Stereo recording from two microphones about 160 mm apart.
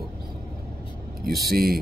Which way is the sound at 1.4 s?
70° right (ahead or behind).